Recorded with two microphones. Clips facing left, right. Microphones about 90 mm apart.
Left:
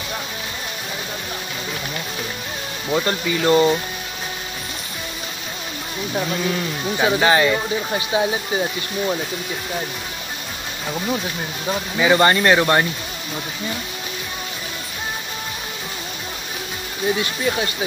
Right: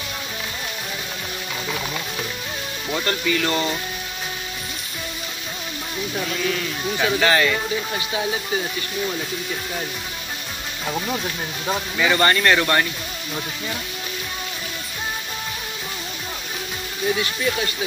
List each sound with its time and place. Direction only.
2.9 s speech: 15° left (ahead or behind)
6.1 s speech: 20° left (ahead or behind)
12.0 s speech: 15° left (ahead or behind)
17.1 s speech: 25° left (ahead or behind)